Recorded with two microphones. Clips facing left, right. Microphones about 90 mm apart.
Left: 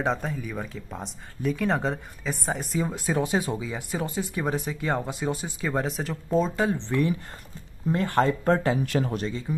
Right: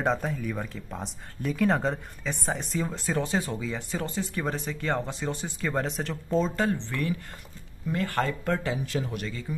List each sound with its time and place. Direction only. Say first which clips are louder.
0.0 s speech: even; centre (ahead or behind)
6.9 s speech: left 5 dB; 20° left (ahead or behind)
8.8 s speech: left 5 dB; 55° left (ahead or behind)
9.1 s speech: left 5 dB; 25° left (ahead or behind)